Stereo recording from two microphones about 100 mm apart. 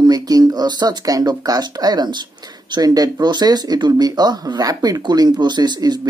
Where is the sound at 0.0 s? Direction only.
40° right (ahead or behind).